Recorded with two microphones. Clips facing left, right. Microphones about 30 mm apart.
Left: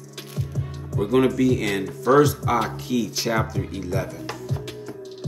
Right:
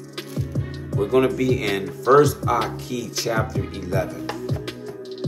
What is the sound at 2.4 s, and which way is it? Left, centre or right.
Speech, right.